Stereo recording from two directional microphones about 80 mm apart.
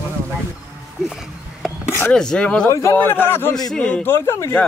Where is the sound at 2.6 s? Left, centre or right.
Left.